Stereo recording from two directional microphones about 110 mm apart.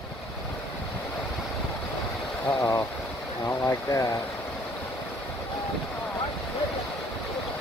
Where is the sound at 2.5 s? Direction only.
30° left (ahead or behind).